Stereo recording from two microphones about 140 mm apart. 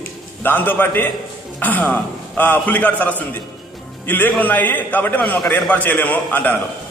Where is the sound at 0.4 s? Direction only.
15° left (ahead or behind).